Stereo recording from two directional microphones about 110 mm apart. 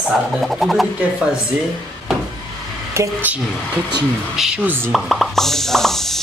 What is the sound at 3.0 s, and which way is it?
Speech, 15° right (ahead or behind).